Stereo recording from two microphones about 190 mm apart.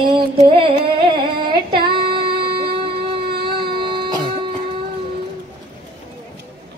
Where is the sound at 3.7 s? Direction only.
25° right (ahead or behind).